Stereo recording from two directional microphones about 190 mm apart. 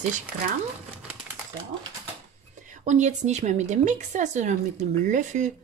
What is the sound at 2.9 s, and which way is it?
Speech, 40° right (ahead or behind).